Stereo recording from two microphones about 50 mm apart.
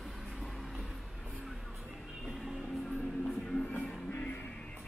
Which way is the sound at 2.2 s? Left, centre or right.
Centre.